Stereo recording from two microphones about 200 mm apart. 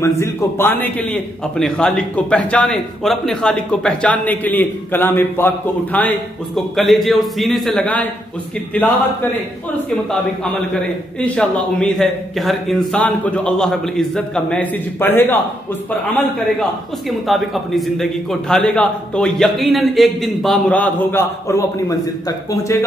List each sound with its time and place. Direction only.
0.0 s a man's voice: 15° left (ahead or behind)
10.4 s a man's voice: 5° left (ahead or behind)